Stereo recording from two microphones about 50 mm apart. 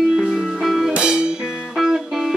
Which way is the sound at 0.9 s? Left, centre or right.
Centre.